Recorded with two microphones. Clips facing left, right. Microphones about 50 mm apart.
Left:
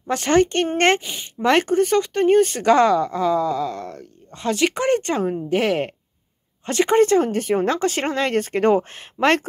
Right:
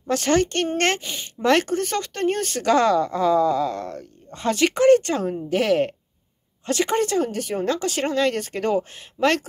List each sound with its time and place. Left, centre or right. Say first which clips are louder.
0.0 s speech: left 3 dB; centre
1.0 s speech: left 1 dB; centre
4.7 s speech: right 4 dB; left